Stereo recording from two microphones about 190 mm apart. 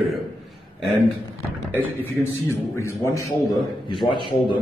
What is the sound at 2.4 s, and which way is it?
A man's voice, 15° left (ahead or behind).